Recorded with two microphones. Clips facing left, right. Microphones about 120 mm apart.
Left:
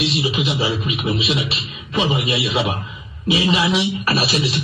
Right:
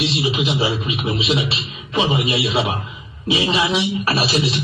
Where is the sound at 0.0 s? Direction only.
30° right (ahead or behind).